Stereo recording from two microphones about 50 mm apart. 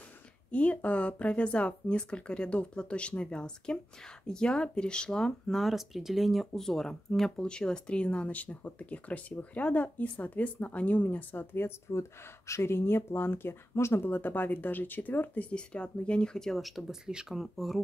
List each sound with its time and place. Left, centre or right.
0.5 s speech: left
5.6 s speech: centre; by 11.7 s left
11.9 s speech: left
14.0 s speech: left
15.5 s speech: left
16.3 s speech: centre
17.0 s speech: centre
17.4 s speech: centre